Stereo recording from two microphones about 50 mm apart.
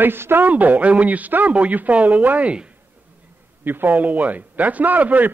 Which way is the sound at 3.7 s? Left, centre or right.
Right.